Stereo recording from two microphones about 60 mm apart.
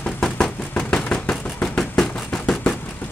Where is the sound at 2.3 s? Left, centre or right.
Centre.